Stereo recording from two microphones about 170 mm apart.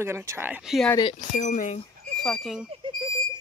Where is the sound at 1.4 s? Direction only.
45° left (ahead or behind).